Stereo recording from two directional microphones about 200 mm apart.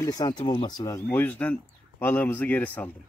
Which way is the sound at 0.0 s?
20° left (ahead or behind).